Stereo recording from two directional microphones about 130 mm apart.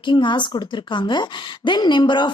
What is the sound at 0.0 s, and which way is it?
A woman's voice, 40° left (ahead or behind).